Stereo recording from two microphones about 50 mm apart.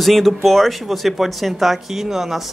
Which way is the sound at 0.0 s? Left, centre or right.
Centre.